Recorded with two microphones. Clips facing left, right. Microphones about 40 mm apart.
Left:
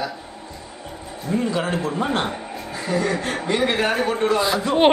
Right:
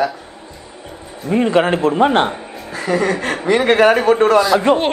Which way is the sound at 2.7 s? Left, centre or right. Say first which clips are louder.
Right 5 dB; right.